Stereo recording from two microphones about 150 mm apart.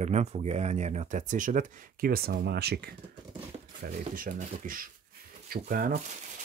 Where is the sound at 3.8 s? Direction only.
65° right (ahead or behind).